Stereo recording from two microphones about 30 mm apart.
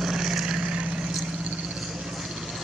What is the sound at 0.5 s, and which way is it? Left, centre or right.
Vehicle, right.